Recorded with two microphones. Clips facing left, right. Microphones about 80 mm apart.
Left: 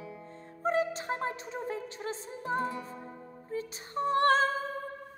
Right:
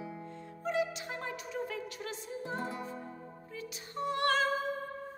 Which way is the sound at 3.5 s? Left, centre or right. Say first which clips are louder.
Left 8 dB; left.